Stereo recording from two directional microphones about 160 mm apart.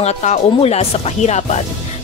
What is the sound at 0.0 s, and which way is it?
Speech, 45° left (ahead or behind).